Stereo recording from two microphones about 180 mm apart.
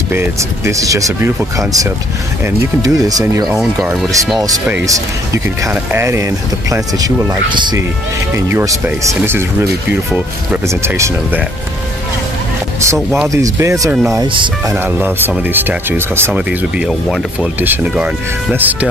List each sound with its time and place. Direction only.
0.1 s speech: 15° right (ahead or behind)
3.4 s speech: 5° right (ahead or behind)
4.8 s speech: 15° right (ahead or behind)
12.8 s speech: 15° right (ahead or behind)
14.7 s speech: 10° right (ahead or behind)